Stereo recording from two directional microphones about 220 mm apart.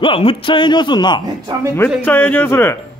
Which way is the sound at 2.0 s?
10° left (ahead or behind).